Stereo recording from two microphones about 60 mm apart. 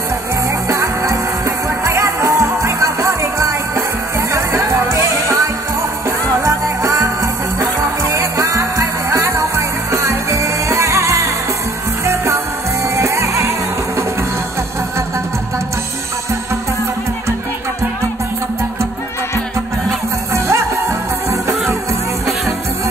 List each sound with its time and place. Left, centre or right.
0.7 s music: right
20.3 s music: right